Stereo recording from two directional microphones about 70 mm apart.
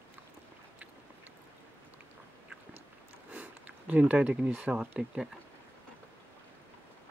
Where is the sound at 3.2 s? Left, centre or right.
Centre.